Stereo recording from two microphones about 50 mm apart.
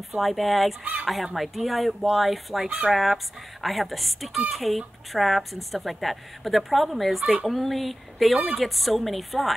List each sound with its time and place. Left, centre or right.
0.1 s speech: centre